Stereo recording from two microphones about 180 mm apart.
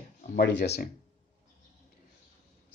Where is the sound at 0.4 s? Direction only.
75° left (ahead or behind).